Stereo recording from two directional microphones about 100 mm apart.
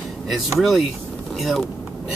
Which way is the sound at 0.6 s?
Centre (ahead or behind).